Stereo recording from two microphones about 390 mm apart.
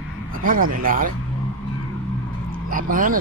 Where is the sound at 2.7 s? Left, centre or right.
Right.